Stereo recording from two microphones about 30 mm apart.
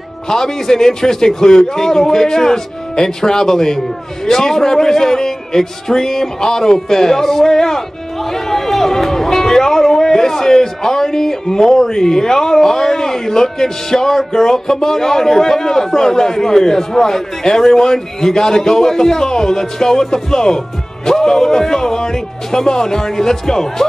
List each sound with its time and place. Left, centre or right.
0.3 s a man's voice: centre